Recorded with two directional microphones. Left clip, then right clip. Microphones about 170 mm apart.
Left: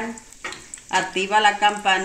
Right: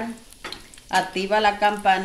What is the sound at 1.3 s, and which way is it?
Speech, 15° right (ahead or behind).